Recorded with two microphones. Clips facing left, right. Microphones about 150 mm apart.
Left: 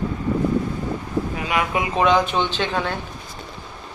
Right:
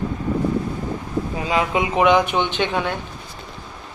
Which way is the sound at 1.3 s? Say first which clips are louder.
Right 4 dB; 25° right (ahead or behind).